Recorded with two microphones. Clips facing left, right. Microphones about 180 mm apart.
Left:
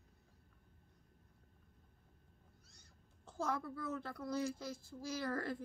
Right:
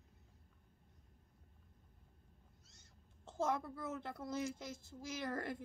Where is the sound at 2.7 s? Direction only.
20° right (ahead or behind).